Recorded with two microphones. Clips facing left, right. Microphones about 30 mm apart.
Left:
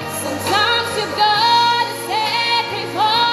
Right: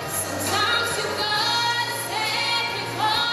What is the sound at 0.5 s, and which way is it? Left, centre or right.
Music, left.